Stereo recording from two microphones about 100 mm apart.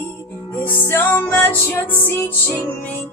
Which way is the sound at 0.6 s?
20° left (ahead or behind).